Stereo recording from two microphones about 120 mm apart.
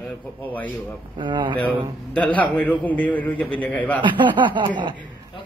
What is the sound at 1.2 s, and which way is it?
Speech, 40° right (ahead or behind).